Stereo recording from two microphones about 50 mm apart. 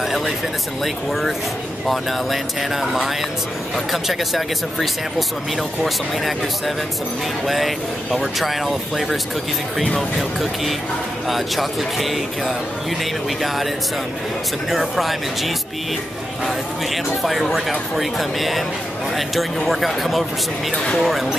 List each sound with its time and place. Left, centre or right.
0.8 s speech: centre
11.2 s speech: centre
14.7 s speech: centre
20.7 s speech: centre
21.0 s speech: centre